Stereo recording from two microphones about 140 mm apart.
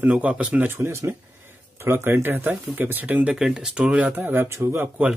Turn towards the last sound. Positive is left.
turn(degrees=-15)  # may be behind; listen again after turning